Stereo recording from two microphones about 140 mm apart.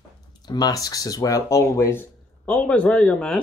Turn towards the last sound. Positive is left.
turn(degrees=5)  # may be behind; listen again after turning